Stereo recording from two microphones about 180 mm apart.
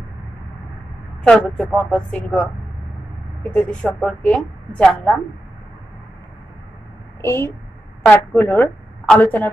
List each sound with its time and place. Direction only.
1.2 s speech: centre (ahead or behind)
3.5 s a woman's voice: 10° left (ahead or behind)
7.2 s a woman's voice: 15° left (ahead or behind)